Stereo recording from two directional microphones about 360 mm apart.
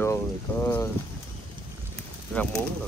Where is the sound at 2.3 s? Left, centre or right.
Centre.